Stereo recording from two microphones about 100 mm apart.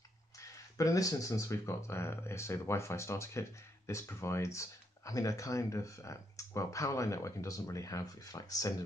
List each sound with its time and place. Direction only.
0.4 s speech: 35° left (ahead or behind)